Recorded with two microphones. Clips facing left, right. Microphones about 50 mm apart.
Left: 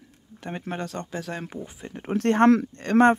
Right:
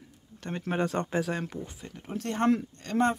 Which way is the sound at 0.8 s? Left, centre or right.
Centre.